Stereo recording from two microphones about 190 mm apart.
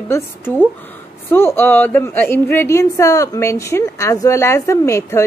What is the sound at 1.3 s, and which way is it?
Speech, 10° left (ahead or behind).